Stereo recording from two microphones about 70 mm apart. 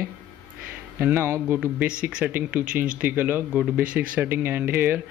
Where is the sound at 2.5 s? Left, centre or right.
Right.